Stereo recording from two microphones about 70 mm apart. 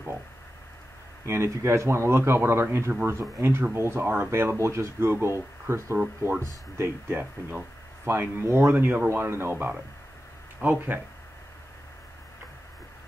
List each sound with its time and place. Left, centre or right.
1.2 s speech: right